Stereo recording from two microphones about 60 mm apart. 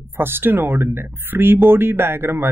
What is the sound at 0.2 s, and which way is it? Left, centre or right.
A man's voice, right.